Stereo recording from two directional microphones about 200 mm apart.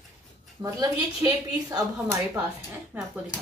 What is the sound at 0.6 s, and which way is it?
A woman's voice, 15° right (ahead or behind).